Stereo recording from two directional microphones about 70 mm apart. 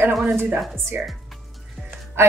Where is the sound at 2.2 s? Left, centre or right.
Right.